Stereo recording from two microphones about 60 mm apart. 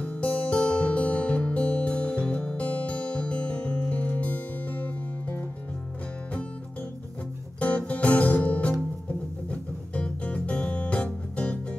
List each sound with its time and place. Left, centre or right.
0.0 s music: left
7.6 s music: left